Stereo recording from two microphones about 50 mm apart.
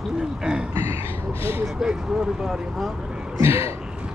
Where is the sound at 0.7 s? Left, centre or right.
Right.